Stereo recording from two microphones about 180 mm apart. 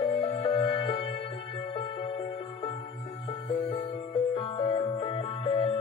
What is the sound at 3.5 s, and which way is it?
Music, 30° left (ahead or behind).